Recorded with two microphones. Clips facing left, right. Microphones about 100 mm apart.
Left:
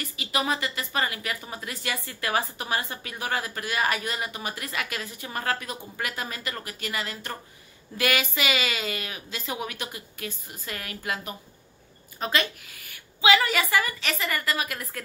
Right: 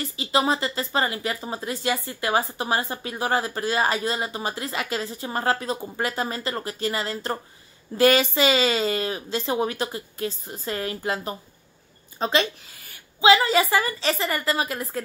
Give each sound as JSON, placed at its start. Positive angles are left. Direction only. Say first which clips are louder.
{"t": 0.0, "sound": "a woman's voice", "louder": "right 6 dB", "side_deg": -30}